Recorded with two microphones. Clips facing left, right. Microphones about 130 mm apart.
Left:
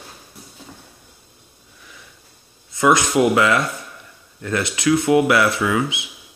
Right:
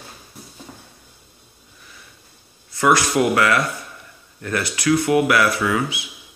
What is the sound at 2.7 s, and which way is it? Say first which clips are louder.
Speech: left 1 dB; 20° left (ahead or behind).